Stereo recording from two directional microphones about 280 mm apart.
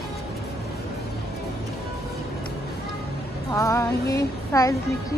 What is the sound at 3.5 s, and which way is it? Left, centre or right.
Speech, centre.